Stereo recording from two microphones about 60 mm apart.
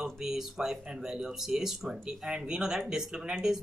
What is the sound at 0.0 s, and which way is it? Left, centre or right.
Speech, centre.